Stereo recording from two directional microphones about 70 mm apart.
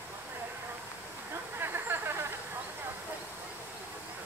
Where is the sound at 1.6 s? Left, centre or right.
Right.